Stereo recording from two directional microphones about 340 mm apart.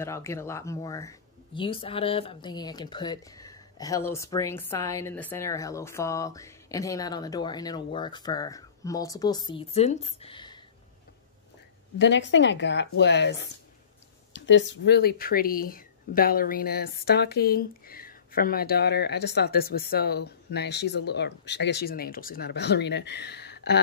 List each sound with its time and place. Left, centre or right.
0.0 s speech: centre
12.0 s a woman's voice: left
14.3 s speech: left